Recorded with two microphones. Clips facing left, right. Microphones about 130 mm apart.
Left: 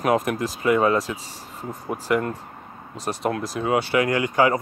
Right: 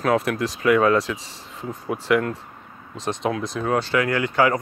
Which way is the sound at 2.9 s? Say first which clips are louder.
Right 1 dB; 5° left (ahead or behind).